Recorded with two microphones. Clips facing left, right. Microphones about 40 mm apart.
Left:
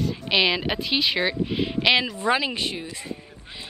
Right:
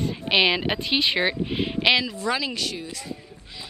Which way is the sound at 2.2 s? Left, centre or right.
Left.